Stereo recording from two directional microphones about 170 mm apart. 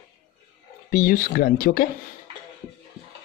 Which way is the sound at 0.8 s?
55° left (ahead or behind).